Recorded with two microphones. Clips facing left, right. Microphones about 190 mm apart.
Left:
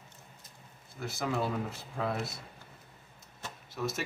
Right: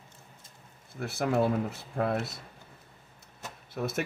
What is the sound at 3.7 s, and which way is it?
Speech, 60° right (ahead or behind).